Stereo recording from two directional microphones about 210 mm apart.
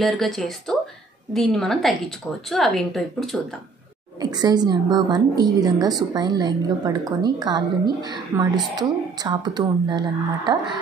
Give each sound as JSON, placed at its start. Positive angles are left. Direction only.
{"t": 0.0, "sound": "a woman's voice", "side_deg": 0}
{"t": 4.2, "sound": "a woman's voice", "side_deg": -20}